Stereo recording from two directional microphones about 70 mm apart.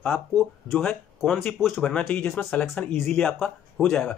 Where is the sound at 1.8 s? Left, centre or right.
Centre.